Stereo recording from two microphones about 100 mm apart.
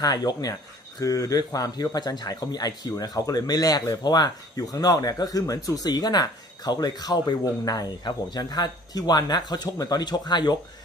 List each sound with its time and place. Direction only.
0.0 s speech: 40° left (ahead or behind)